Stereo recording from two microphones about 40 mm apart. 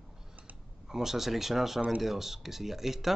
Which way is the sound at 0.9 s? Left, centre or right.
Centre.